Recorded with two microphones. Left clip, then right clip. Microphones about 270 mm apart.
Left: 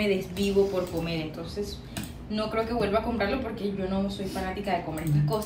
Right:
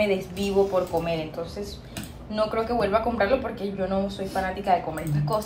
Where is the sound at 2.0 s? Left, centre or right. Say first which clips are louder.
Right 6 dB; centre.